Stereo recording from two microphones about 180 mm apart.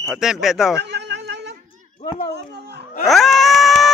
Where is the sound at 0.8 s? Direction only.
70° right (ahead or behind).